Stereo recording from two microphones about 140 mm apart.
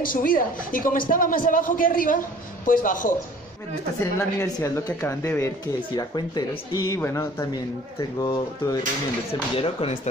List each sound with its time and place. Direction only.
0.0 s a man's voice: 80° left
4.0 s a woman's voice: 20° left (ahead or behind)
5.9 s speech: 30° left (ahead or behind)
6.9 s a woman's voice: 20° left (ahead or behind)
9.3 s speech: 45° left (ahead or behind)